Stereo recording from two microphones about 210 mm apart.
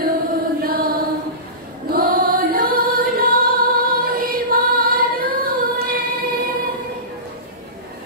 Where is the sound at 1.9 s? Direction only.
45° right (ahead or behind).